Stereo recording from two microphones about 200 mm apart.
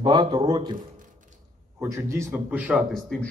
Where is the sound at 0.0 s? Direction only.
25° right (ahead or behind).